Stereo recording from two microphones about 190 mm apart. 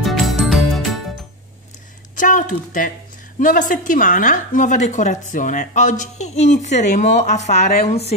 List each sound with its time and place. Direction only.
0.0 s music: centre (ahead or behind)
2.1 s a woman's voice: 45° left (ahead or behind)